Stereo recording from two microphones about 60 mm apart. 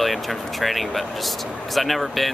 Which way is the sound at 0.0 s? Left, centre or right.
Centre.